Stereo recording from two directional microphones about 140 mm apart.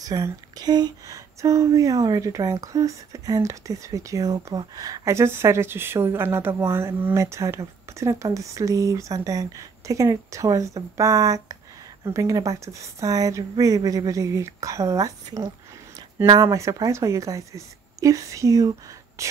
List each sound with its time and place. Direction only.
0.0 s speech: 25° right (ahead or behind)